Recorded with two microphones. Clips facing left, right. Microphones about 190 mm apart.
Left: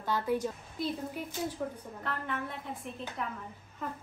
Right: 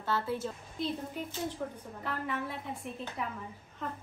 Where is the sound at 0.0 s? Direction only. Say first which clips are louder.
Left 2 dB; 15° left (ahead or behind).